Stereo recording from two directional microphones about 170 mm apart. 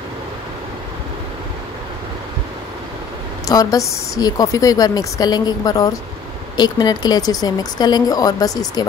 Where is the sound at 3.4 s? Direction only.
20° left (ahead or behind).